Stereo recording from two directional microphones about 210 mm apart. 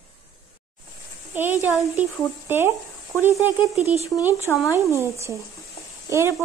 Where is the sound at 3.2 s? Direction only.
5° right (ahead or behind).